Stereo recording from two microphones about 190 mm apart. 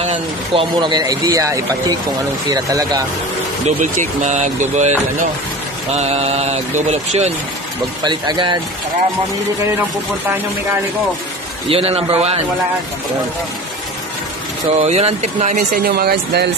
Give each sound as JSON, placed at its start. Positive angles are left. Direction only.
{"t": 0.0, "sound": "speech", "side_deg": -35}
{"t": 0.7, "sound": "a man's voice", "side_deg": -25}
{"t": 3.6, "sound": "speech", "side_deg": -40}
{"t": 8.0, "sound": "a man's voice", "side_deg": -25}
{"t": 11.7, "sound": "speech", "side_deg": -30}
{"t": 14.8, "sound": "speech", "side_deg": -35}